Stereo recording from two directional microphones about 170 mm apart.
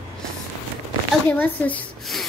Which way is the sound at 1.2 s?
10° left (ahead or behind).